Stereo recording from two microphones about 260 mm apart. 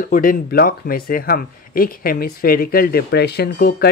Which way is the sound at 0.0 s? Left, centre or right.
Left.